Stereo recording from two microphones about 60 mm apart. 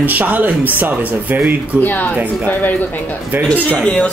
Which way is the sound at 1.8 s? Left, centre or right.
Left.